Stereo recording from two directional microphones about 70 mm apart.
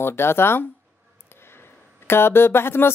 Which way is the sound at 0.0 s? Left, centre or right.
Left.